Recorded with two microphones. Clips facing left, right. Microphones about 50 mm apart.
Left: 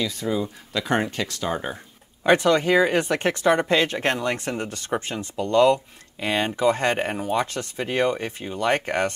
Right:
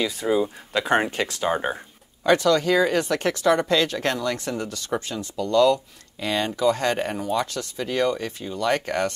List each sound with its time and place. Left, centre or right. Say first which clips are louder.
0.0 s speech: right 3 dB; centre
2.2 s speech: left 1 dB; left